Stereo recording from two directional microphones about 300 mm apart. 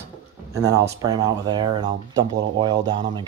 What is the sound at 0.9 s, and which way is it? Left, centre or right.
Speech, centre.